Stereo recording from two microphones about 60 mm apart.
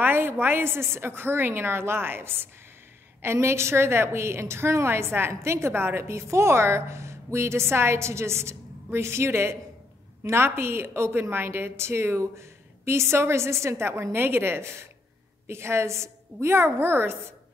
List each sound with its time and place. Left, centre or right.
0.0 s a woman's voice: right